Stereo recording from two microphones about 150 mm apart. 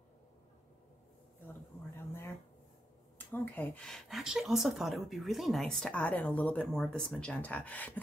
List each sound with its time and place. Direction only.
2.0 s speech: 15° left (ahead or behind)